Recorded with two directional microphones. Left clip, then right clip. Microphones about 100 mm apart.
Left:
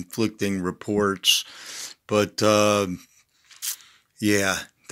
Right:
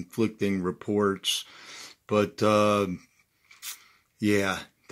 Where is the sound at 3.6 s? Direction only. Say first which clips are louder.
Left 8 dB; 25° left (ahead or behind).